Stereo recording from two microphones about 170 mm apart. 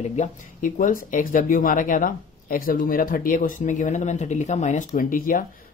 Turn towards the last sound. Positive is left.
turn(degrees=55)  # may be behind; listen again after turning